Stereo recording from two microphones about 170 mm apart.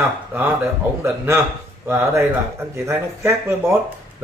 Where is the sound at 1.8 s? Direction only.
15° right (ahead or behind).